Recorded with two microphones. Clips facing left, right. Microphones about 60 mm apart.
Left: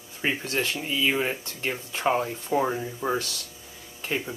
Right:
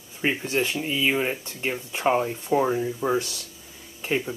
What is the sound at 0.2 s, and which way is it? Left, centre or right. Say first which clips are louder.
Speech: right 3 dB; centre.